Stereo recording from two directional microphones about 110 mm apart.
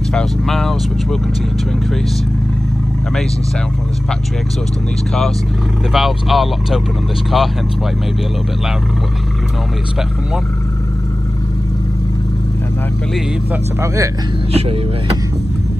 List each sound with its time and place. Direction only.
0.1 s vehicle: 5° left (ahead or behind)
5.9 s speech: centre (ahead or behind)
14.5 s speech: 60° right (ahead or behind)